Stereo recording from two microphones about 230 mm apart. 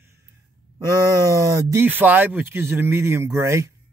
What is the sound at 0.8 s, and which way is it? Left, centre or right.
Speech, centre.